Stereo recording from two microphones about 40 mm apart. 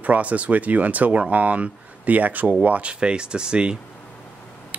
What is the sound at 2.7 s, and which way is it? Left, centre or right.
Speech, right.